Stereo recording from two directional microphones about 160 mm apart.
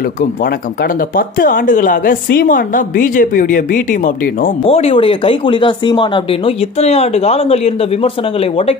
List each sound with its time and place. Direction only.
1.1 s a woman's voice: 60° left (ahead or behind)
4.6 s speech: 40° left (ahead or behind)
6.8 s speech: 40° left (ahead or behind)